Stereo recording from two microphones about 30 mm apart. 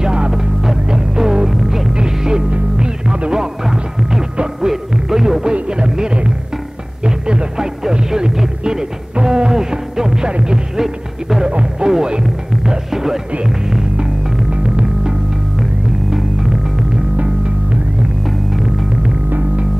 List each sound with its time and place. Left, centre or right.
0.0 s music: right
1.5 s music: centre
2.0 s music: right
5.1 s music: centre
5.4 s music: right
9.1 s music: right
10.8 s music: centre
11.8 s music: right
12.9 s music: centre
14.6 s music: right
16.1 s music: centre